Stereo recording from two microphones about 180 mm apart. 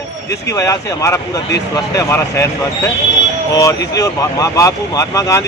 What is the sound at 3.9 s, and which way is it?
Speech, 20° left (ahead or behind).